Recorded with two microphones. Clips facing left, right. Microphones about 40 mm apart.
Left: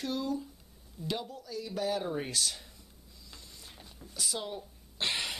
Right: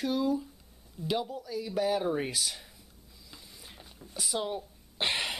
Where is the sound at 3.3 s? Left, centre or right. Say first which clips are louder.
Right 1 dB; centre.